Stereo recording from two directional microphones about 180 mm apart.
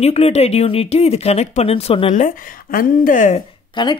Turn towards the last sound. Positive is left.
turn(degrees=25)  # may be behind; listen again after turning